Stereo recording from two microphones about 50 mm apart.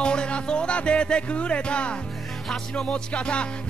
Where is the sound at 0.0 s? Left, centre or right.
Centre.